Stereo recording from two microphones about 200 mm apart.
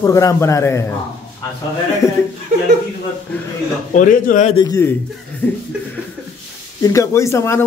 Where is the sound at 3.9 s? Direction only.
40° left (ahead or behind).